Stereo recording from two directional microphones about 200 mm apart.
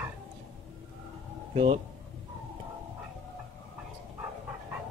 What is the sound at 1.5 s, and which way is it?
Speech, 30° right (ahead or behind).